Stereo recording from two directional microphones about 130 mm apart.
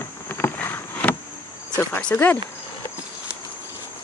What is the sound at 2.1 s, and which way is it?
Speech, 15° left (ahead or behind).